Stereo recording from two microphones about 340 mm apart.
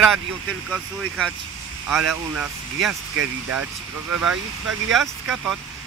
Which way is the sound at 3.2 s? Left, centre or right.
Right.